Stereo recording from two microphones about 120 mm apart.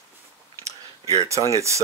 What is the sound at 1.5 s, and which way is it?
Speech, 25° right (ahead or behind).